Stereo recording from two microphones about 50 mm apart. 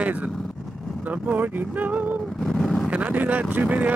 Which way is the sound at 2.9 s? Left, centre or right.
Right.